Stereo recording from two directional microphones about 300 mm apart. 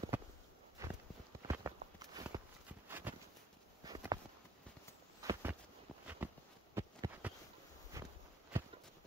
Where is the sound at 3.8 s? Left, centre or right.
Centre.